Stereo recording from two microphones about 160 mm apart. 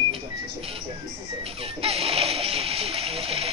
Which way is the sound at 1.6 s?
40° right (ahead or behind).